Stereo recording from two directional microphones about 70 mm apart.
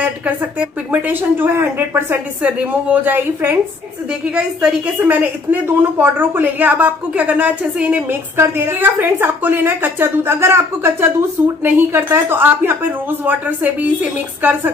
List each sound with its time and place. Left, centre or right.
0.6 s a woman's voice: right
2.4 s a woman's voice: right
4.4 s a woman's voice: centre
5.0 s a woman's voice: right
8.4 s a woman's voice: right